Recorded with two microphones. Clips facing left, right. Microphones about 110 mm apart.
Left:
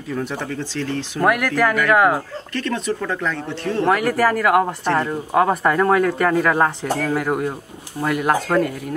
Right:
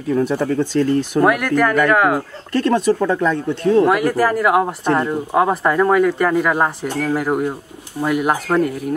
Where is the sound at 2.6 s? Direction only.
40° right (ahead or behind).